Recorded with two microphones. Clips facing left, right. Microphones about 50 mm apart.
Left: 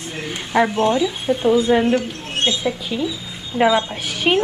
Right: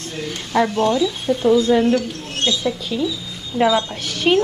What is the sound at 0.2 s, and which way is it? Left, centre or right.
Speech, centre.